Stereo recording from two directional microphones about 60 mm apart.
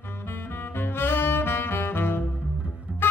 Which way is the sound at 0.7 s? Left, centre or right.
Left.